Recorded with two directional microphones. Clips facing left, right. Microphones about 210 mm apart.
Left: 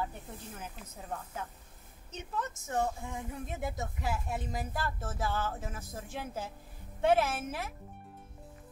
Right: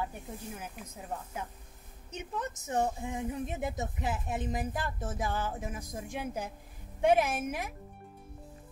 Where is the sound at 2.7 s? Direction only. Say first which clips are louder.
Right 2 dB; 20° right (ahead or behind).